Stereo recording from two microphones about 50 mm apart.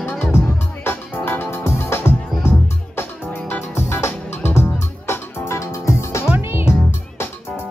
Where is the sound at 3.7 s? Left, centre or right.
Left.